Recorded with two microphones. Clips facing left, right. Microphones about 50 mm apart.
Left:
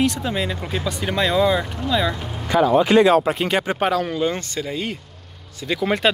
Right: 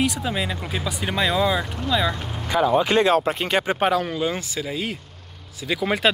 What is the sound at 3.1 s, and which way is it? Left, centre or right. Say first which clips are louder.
Speech: left 3 dB; left.